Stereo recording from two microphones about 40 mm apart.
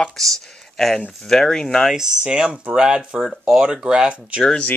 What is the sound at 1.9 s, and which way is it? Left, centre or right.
Speech, centre.